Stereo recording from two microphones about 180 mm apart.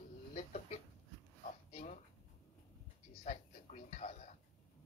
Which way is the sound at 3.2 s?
40° left (ahead or behind).